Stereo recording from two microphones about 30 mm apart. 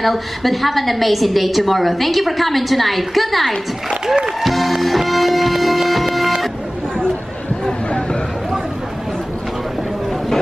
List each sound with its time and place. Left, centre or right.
0.0 s a woman's voice: centre
4.4 s music: centre
7.6 s vehicle: left